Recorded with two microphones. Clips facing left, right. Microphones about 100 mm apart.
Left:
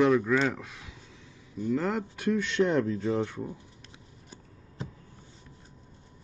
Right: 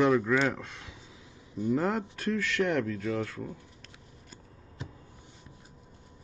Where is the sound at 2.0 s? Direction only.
15° left (ahead or behind).